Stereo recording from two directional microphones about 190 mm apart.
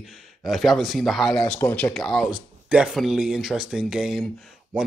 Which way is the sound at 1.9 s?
Centre (ahead or behind).